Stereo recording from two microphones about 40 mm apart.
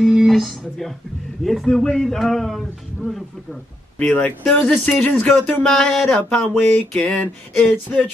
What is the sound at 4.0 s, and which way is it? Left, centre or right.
Speech, left.